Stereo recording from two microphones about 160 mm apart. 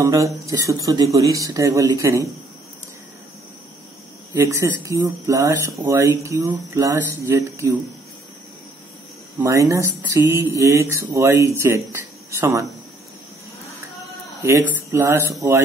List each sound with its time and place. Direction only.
0.0 s speech: 20° right (ahead or behind)
4.3 s speech: 20° right (ahead or behind)
9.4 s speech: 20° right (ahead or behind)
14.4 s speech: 15° right (ahead or behind)